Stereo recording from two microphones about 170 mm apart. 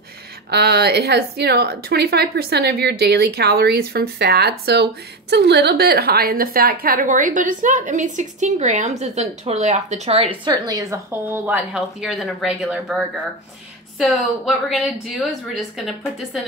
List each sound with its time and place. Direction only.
0.5 s a woman's voice: 70° right (ahead or behind); by 15.2 s 5° right (ahead or behind)